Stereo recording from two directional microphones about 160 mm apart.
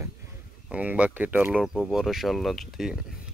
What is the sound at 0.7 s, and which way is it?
Speech, 10° right (ahead or behind).